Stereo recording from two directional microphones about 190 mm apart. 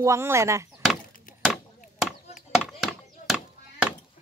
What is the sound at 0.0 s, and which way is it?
Speech, 15° right (ahead or behind).